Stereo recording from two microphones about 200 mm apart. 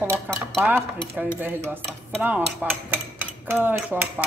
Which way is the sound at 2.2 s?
5° right (ahead or behind).